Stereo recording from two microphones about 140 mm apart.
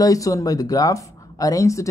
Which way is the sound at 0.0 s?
25° left (ahead or behind).